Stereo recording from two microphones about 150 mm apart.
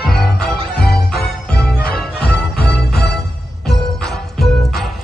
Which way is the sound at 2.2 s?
90° left.